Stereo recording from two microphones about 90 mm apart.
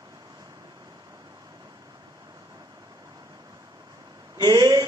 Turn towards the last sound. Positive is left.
turn(degrees=-45)  # may be behind; listen again after turning